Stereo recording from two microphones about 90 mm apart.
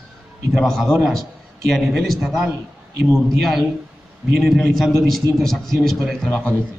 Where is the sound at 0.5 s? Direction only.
Centre (ahead or behind).